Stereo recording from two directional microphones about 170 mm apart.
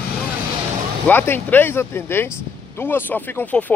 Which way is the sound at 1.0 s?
10° left (ahead or behind).